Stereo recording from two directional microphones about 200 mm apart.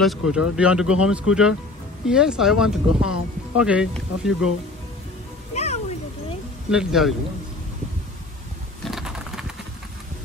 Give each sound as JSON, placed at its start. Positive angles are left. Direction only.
{"t": 0.0, "sound": "speech", "side_deg": 0}
{"t": 5.5, "sound": "music", "side_deg": 35}
{"t": 6.7, "sound": "speech", "side_deg": -5}
{"t": 8.8, "sound": "typing", "side_deg": 0}